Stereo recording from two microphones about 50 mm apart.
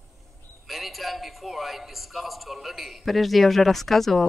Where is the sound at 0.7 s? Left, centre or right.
Centre.